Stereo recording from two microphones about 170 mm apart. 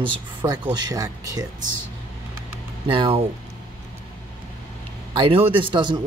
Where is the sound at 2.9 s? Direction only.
30° right (ahead or behind).